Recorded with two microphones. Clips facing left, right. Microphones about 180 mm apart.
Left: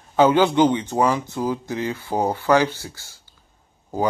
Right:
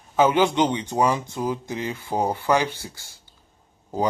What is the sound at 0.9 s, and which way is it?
Speech, 15° right (ahead or behind).